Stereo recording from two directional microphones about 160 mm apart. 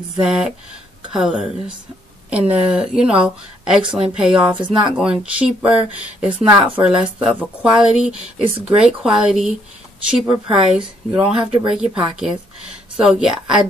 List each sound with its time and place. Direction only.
0.2 s speech: 5° right (ahead or behind)
2.5 s speech: 5° right (ahead or behind)
4.6 s speech: 30° right (ahead or behind)
4.9 s speech: 5° right (ahead or behind)